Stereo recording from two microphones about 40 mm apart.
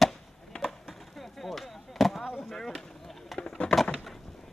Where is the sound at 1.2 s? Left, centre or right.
Centre.